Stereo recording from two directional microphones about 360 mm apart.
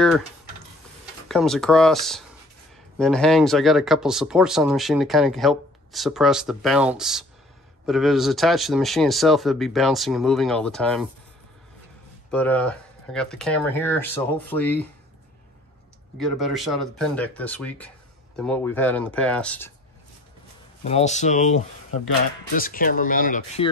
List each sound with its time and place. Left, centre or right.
1.3 s speech: centre
12.3 s speech: centre
16.2 s speech: centre
20.8 s speech: centre